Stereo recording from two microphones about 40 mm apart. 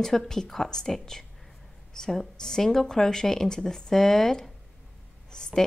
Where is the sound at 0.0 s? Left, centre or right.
Centre.